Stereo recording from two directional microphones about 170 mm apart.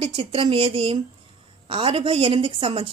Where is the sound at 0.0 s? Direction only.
35° right (ahead or behind).